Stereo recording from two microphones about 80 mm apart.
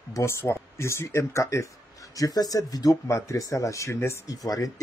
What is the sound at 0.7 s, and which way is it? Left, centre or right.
Speech, left.